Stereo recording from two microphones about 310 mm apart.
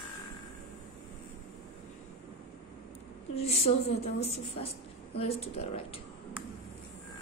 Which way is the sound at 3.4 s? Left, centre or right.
Centre.